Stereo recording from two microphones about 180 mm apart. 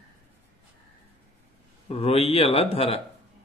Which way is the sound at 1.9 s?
35° left (ahead or behind).